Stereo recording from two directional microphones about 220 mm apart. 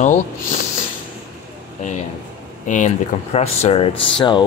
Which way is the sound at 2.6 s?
35° left (ahead or behind).